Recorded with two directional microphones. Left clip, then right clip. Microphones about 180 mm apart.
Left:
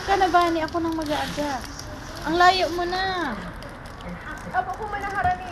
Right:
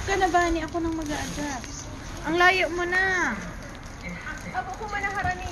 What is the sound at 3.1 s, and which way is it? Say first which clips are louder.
Speech: right 2 dB; 25° left (ahead or behind).